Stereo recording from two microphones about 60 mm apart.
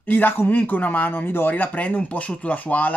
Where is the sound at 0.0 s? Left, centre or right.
Left.